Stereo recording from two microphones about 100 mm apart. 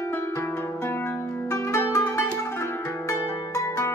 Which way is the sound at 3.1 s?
30° left (ahead or behind).